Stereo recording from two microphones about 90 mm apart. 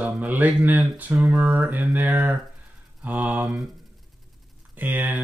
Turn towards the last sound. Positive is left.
turn(degrees=-20)  # may be behind; listen again after turning